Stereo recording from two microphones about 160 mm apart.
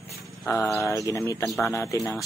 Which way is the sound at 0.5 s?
20° left (ahead or behind).